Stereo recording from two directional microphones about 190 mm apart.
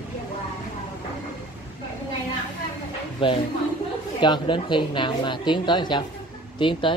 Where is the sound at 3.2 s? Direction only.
25° left (ahead or behind).